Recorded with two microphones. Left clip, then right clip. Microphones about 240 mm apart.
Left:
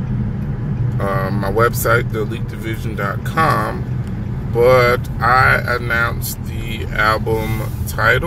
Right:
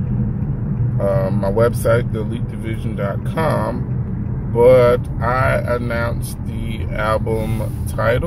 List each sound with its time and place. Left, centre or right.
1.0 s speech: centre
7.0 s speech: centre